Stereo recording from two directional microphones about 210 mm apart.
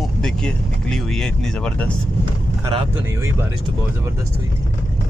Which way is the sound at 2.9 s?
10° right (ahead or behind).